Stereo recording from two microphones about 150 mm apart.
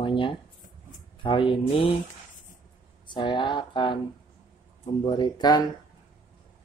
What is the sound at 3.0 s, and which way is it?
Speech, 35° left (ahead or behind).